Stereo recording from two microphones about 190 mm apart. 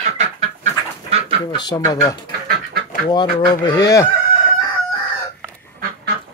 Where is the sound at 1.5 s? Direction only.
20° left (ahead or behind).